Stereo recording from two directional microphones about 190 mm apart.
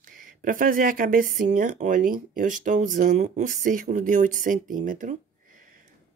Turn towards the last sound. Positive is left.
turn(degrees=-45)  # may be behind; listen again after turning